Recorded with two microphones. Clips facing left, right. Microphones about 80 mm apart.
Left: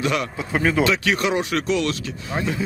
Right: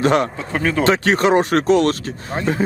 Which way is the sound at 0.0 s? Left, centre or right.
Right.